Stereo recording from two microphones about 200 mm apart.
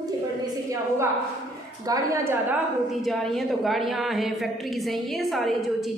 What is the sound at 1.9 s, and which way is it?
Speech, 15° right (ahead or behind).